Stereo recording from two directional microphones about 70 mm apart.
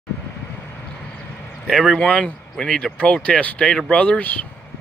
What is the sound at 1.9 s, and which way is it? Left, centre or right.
Speech, centre.